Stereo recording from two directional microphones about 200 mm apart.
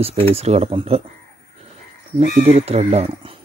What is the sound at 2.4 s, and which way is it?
Speech, 30° right (ahead or behind).